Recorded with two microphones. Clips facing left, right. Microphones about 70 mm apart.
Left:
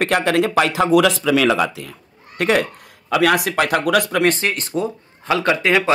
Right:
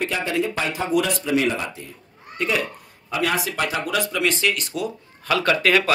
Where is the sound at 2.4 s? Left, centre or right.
Left.